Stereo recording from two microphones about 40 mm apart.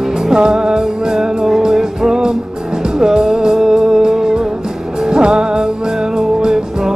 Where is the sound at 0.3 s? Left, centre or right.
Centre.